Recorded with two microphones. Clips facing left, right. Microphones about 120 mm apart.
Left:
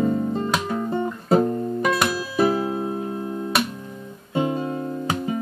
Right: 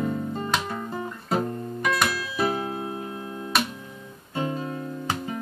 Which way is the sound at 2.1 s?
35° left (ahead or behind).